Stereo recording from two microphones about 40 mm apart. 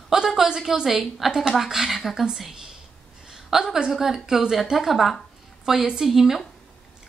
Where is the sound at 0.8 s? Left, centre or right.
Centre.